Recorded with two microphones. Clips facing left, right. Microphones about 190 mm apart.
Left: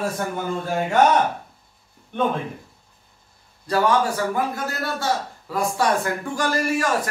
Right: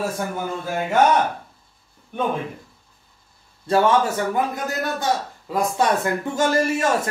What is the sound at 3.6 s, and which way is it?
Speech, 25° right (ahead or behind).